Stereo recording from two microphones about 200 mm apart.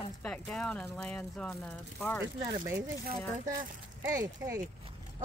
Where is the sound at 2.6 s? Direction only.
15° right (ahead or behind).